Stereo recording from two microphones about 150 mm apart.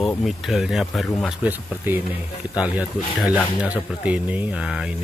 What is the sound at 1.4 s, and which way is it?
Speech, 10° right (ahead or behind).